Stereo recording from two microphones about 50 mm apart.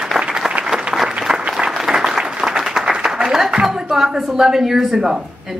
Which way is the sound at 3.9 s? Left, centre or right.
Centre.